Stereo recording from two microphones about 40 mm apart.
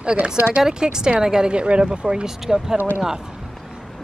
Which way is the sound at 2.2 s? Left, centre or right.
Centre.